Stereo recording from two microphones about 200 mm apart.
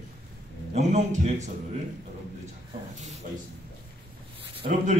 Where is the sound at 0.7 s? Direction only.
35° right (ahead or behind).